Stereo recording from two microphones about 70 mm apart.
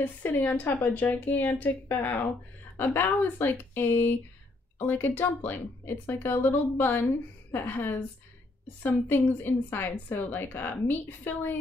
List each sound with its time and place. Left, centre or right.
0.2 s a woman's voice: left